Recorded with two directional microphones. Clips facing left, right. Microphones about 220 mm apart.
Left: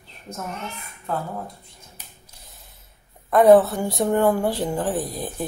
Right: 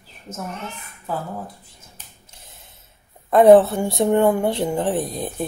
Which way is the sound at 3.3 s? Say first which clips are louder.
Right 2 dB; 25° right (ahead or behind).